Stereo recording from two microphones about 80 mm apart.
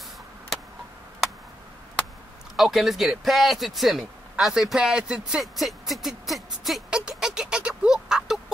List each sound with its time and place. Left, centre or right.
2.5 s speech: centre